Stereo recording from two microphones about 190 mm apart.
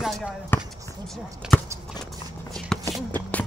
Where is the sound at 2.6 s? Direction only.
Centre (ahead or behind).